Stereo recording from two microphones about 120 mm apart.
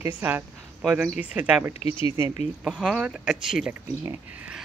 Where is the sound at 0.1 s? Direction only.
15° right (ahead or behind).